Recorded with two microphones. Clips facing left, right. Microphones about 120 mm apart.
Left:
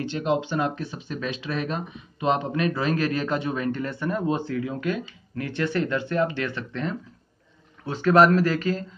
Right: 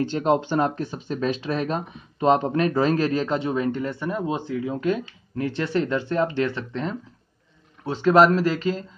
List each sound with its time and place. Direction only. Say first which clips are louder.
0.0 s speech: right 4 dB; 40° right (ahead or behind); by 8.8 s 20° right (ahead or behind)